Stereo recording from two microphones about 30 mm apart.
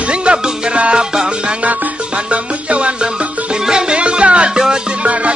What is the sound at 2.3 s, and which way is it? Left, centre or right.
Music, right.